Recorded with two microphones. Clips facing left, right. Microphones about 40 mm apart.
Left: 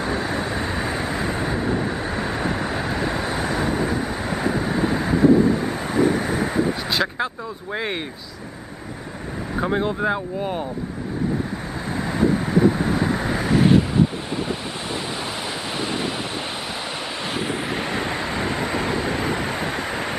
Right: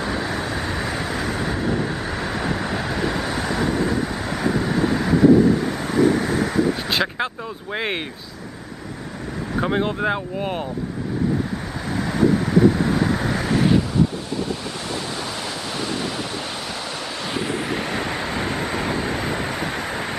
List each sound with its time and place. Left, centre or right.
0.0 s vehicle: centre
3.3 s vehicle: left
6.9 s vehicle: centre
7.7 s speech: right
9.6 s speech: right
12.1 s vehicle: left
13.0 s vehicle: centre
13.3 s vehicle: centre
13.7 s waves: left
17.2 s vehicle: centre